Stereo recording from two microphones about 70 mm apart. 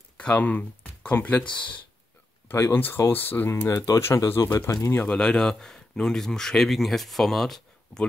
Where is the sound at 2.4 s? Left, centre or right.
Left.